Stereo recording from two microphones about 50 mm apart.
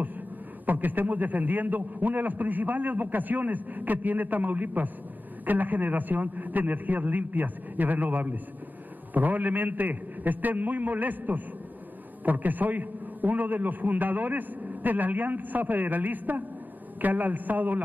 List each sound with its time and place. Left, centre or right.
0.7 s a man's voice: right